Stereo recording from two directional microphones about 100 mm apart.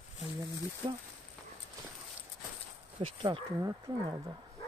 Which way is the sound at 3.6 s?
45° right (ahead or behind).